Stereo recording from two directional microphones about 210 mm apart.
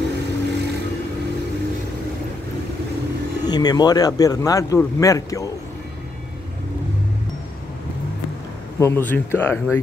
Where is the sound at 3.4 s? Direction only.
20° left (ahead or behind).